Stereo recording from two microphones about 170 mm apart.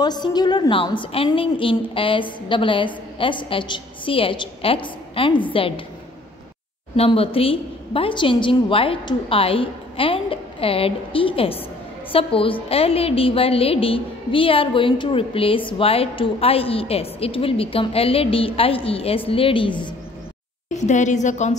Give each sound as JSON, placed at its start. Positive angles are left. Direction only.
{"t": 0.0, "sound": "a woman's voice", "side_deg": 25}
{"t": 7.0, "sound": "a woman's voice", "side_deg": 35}
{"t": 20.7, "sound": "a woman's voice", "side_deg": 45}